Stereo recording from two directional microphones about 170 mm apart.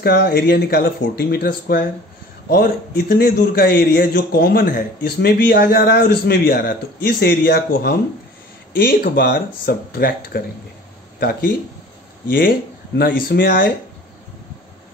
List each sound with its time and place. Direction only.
0.0 s a man's voice: 70° left (ahead or behind)